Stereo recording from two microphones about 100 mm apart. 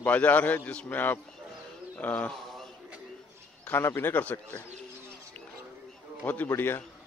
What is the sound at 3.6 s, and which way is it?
Speech, 25° left (ahead or behind).